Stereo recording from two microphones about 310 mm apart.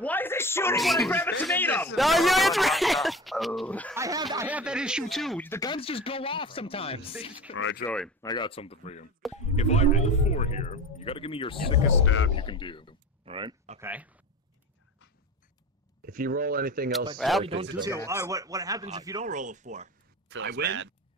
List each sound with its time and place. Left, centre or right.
0.0 s a sound: centre
1.4 s speech: centre
3.9 s speech: centre
7.5 s speech: left
7.8 s speech: centre
12.0 s speech: left
12.4 s speech: centre
13.2 s speech: centre
16.1 s speech: right
17.2 s speech: centre
17.7 s speech: centre
19.2 s speech: right
20.2 s a man's voice: right